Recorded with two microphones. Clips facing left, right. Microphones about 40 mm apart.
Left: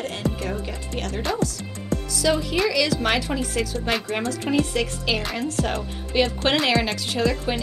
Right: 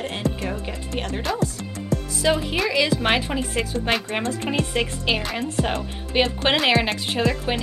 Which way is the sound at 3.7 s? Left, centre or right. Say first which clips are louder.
Right 2 dB; centre.